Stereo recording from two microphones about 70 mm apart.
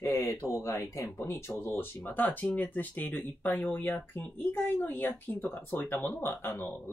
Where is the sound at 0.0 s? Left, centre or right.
Left.